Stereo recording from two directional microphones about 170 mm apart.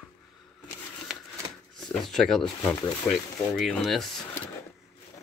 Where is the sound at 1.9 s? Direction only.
Centre (ahead or behind).